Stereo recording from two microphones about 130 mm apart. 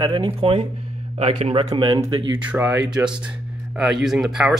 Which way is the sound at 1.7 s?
40° right (ahead or behind).